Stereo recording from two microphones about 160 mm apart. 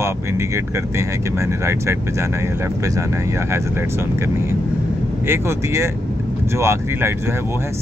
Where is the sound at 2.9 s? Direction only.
20° right (ahead or behind).